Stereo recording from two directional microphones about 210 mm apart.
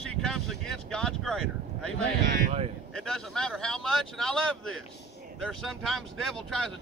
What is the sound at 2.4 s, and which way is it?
Speech, 30° right (ahead or behind).